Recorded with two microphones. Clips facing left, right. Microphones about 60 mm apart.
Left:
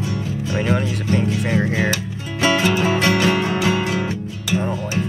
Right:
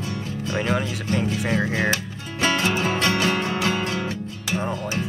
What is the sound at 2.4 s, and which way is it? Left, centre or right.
Music, centre.